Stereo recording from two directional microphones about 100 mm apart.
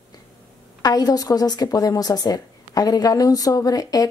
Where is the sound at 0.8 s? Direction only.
40° left (ahead or behind).